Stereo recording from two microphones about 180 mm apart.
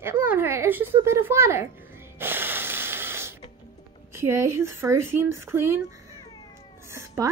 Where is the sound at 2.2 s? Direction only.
10° right (ahead or behind).